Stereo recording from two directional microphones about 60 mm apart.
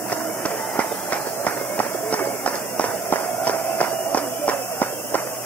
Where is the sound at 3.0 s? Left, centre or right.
Left.